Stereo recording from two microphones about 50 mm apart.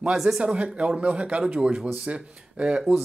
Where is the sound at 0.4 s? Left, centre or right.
Centre.